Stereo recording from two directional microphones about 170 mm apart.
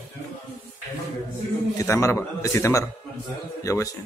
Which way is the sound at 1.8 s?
15° left (ahead or behind).